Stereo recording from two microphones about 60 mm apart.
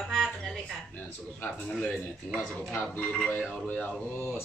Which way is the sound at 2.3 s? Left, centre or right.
Centre.